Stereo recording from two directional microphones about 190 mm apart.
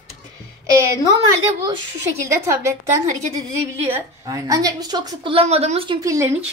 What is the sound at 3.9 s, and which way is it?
A woman's voice, 15° right (ahead or behind).